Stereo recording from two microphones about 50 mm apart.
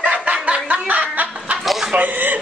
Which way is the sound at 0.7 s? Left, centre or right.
Right.